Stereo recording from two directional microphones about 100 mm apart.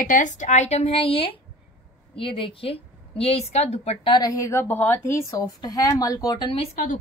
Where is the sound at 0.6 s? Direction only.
80° left.